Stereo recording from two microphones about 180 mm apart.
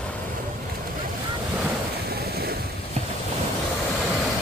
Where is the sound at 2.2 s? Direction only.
60° right (ahead or behind).